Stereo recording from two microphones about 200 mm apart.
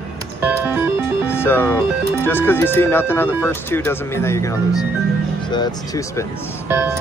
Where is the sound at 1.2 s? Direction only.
10° left (ahead or behind).